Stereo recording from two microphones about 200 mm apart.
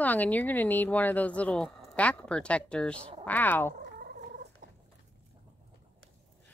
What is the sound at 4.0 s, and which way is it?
Cat, 50° right (ahead or behind).